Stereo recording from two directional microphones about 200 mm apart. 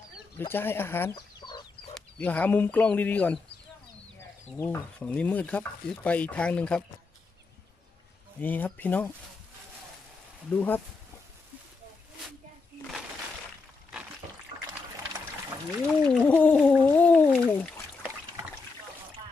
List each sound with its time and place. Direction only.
0.4 s speech: 10° left (ahead or behind)
1.1 s chicken: 20° left (ahead or behind)
2.0 s speech: 5° left (ahead or behind)
4.6 s speech: 10° left (ahead or behind)
8.4 s speech: 10° left (ahead or behind)
10.5 s speech: 10° left (ahead or behind)
15.9 s a sound: 5° left (ahead or behind)